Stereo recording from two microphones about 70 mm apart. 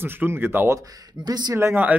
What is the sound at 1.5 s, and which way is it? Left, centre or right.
Speech, right.